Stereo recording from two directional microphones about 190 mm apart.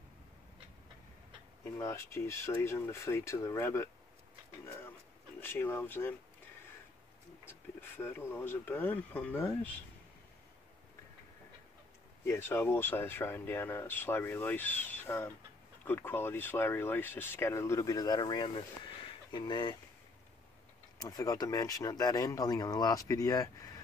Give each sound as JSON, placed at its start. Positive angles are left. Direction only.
{"t": 1.6, "sound": "speech", "side_deg": 15}
{"t": 5.4, "sound": "speech", "side_deg": 10}
{"t": 12.3, "sound": "speech", "side_deg": 10}
{"t": 21.0, "sound": "speech", "side_deg": 20}